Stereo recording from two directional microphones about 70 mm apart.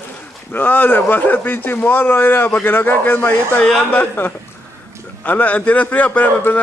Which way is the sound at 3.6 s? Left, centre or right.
Centre.